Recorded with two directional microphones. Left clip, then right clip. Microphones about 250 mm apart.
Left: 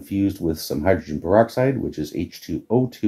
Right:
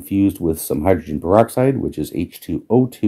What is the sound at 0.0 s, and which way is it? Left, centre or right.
Speech, right.